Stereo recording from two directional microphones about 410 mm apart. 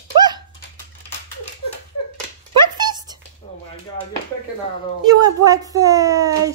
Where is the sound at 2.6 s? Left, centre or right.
Centre.